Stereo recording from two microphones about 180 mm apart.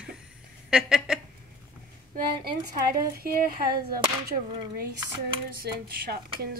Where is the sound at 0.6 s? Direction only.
5° right (ahead or behind).